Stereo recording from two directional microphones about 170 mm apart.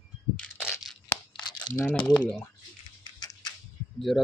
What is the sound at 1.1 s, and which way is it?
Crunch, 5° left (ahead or behind).